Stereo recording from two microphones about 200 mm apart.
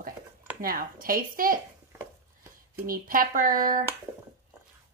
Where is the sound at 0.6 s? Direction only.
45° right (ahead or behind).